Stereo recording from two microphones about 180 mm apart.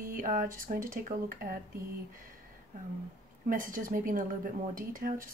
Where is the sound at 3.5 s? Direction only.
50° right (ahead or behind).